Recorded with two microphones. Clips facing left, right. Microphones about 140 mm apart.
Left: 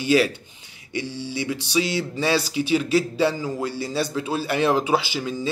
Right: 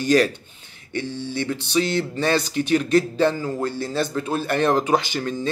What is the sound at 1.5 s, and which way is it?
Speech, 10° left (ahead or behind).